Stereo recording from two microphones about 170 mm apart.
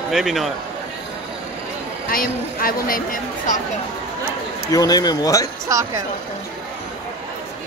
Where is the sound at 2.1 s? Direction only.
55° left (ahead or behind).